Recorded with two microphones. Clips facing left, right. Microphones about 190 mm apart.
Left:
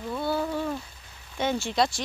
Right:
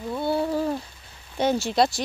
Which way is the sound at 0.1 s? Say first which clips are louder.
Right 4 dB; 25° right (ahead or behind).